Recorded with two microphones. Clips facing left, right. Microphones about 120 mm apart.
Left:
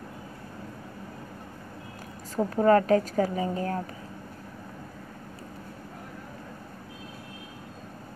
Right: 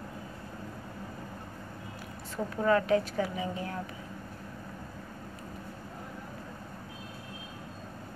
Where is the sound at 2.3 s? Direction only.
40° left (ahead or behind).